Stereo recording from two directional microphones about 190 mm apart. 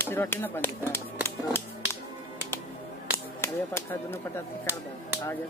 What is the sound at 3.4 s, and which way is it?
Speech, 10° left (ahead or behind).